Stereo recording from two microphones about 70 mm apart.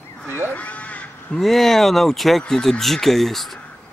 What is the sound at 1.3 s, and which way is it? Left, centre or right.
Speech, centre.